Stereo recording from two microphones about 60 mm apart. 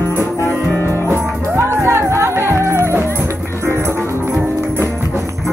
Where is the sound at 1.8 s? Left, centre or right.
Right.